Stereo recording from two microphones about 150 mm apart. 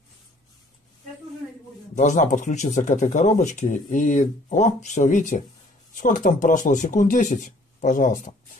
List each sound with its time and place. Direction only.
2.0 s speech: 55° left (ahead or behind)